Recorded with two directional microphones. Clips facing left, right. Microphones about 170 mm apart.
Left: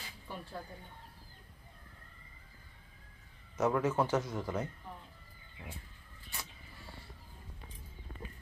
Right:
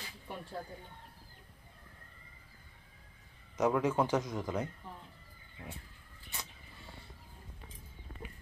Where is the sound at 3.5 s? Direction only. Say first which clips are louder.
Right 1 dB; 15° right (ahead or behind).